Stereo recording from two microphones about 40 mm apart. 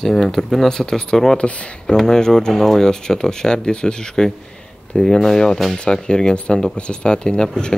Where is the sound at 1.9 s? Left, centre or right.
Centre.